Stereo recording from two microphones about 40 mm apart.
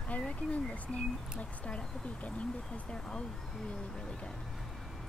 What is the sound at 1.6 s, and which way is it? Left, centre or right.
Speech, left.